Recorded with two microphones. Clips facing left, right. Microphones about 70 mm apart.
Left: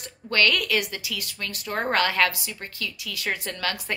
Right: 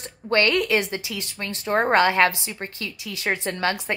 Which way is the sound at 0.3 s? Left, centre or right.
Right.